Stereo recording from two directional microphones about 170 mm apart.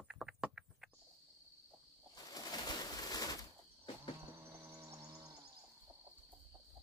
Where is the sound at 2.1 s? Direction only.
20° left (ahead or behind).